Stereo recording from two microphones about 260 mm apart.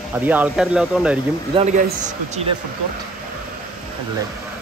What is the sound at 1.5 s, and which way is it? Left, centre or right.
A man's voice, right.